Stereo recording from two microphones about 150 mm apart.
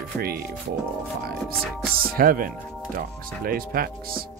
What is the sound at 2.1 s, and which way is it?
Speech, 75° right (ahead or behind).